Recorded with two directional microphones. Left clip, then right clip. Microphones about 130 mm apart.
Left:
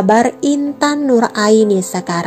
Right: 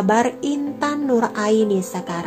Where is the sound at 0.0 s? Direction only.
35° left (ahead or behind).